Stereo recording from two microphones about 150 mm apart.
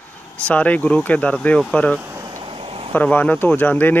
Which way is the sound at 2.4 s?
35° right (ahead or behind).